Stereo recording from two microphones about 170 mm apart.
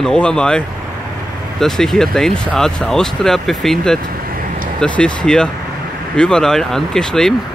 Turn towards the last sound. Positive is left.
turn(degrees=5)  # may be behind; listen again after turning